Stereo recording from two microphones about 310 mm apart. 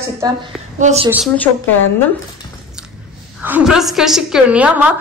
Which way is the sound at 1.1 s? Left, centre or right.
Centre.